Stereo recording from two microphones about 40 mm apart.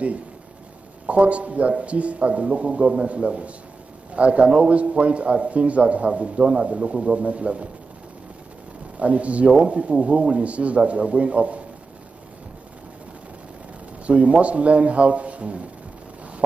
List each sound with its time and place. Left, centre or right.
1.0 s a man's voice: right
9.0 s a man's voice: right
14.0 s a man's voice: right